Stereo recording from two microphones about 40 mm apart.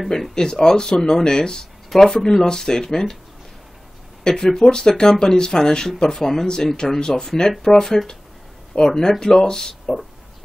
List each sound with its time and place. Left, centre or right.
0.1 s speech: centre
4.2 s speech: centre